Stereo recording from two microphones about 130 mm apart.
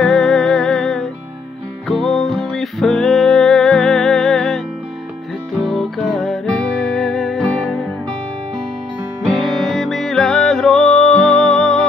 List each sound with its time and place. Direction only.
0.0 s music: 5° left (ahead or behind)
5.6 s music: 5° left (ahead or behind)
9.2 s music: centre (ahead or behind)